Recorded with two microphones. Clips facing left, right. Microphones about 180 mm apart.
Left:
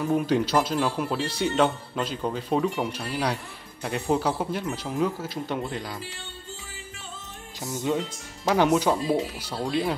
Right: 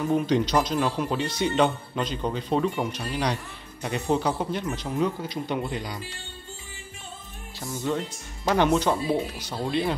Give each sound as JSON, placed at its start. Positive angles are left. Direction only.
{"t": 0.1, "sound": "speech", "side_deg": 5}
{"t": 7.6, "sound": "speech", "side_deg": 15}